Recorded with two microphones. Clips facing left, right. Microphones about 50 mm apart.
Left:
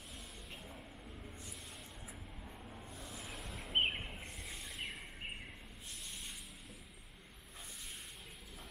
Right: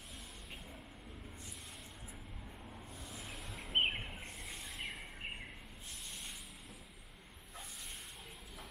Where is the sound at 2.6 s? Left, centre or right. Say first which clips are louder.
Even; centre.